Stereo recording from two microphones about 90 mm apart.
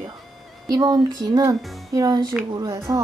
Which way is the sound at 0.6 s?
45° right (ahead or behind).